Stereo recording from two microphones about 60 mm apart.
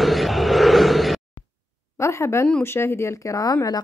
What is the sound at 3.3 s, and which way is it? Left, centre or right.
Speech, left.